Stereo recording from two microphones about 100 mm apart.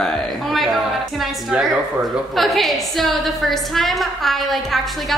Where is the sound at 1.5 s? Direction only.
10° right (ahead or behind).